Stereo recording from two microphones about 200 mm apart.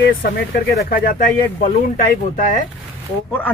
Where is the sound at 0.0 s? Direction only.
50° left (ahead or behind).